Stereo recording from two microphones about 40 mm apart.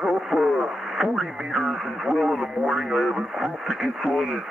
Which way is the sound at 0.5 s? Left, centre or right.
Centre.